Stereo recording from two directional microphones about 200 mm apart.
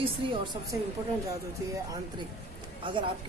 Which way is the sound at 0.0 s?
25° right (ahead or behind).